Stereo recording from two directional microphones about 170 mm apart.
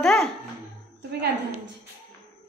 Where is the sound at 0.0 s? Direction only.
Centre (ahead or behind).